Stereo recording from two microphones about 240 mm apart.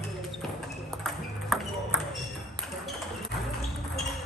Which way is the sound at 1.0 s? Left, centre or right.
Centre.